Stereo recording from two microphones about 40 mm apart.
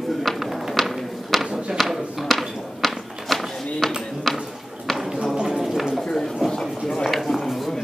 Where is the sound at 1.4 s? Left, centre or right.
Centre.